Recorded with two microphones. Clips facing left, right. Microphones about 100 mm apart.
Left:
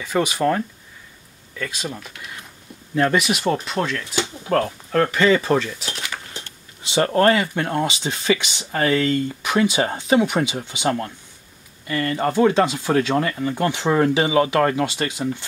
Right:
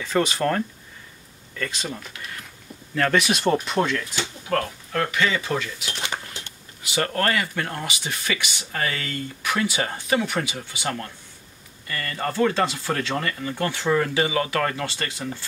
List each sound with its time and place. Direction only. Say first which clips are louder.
0.0 s speech: left 2 dB; 10° left (ahead or behind)
4.0 s speech: left 5 dB; 25° left (ahead or behind)
5.0 s speech: left 7 dB; 40° left (ahead or behind)
6.0 s a sound: right 1 dB; 25° right (ahead or behind)
6.8 s speech: left 7 dB; 25° left (ahead or behind)